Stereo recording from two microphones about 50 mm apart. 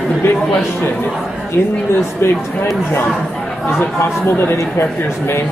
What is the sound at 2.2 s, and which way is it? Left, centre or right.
Speech, left.